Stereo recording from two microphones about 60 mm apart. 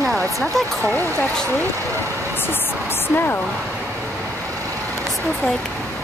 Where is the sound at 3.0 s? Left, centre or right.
Left.